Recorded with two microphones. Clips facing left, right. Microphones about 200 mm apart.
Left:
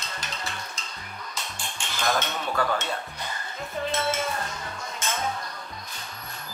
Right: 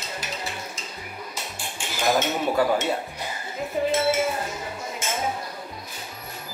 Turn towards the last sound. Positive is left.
turn(degrees=-5)  # may be behind; listen again after turning